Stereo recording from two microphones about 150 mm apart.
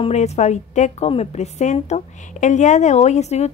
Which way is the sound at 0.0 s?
45° left (ahead or behind).